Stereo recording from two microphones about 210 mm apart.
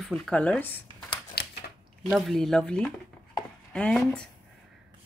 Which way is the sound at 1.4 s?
50° left (ahead or behind).